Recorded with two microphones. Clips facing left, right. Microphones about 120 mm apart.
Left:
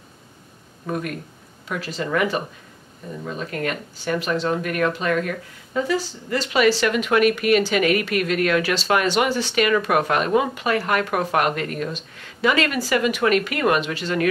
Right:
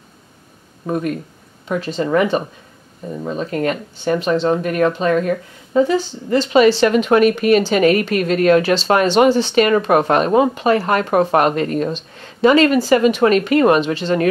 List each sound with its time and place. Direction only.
1.7 s speech: 25° right (ahead or behind)